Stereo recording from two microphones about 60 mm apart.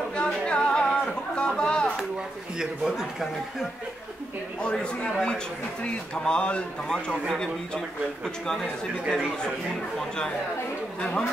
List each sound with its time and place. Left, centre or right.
0.1 s a sound: centre
2.6 s a man's voice: centre
4.6 s a man's voice: centre
9.1 s a man's voice: centre